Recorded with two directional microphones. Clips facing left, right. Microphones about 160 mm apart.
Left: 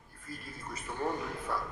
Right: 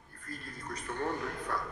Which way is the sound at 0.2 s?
5° left (ahead or behind).